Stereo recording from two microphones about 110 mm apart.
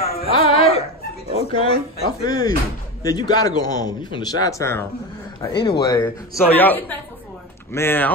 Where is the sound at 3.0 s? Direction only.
35° left (ahead or behind).